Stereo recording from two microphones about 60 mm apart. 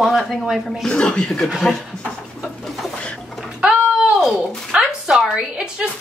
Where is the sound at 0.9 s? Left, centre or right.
Centre.